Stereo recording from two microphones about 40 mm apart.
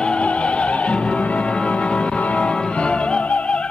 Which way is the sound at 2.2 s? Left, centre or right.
Left.